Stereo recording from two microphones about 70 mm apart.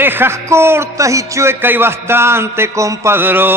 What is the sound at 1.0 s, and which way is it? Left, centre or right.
Music, right.